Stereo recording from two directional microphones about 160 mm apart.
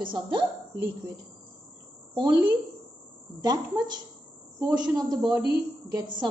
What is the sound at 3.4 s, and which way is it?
A woman's voice, 25° right (ahead or behind).